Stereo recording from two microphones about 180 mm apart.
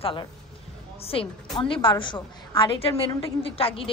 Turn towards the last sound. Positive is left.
turn(degrees=30)  # may be behind; listen again after turning